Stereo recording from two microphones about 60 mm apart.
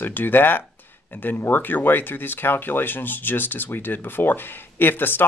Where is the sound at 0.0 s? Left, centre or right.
Left.